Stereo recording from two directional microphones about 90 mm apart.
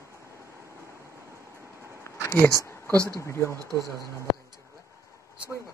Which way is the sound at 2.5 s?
40° right (ahead or behind).